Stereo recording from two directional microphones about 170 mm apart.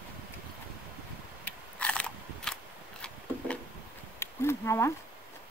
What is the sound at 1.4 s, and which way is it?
Biting, 5° left (ahead or behind).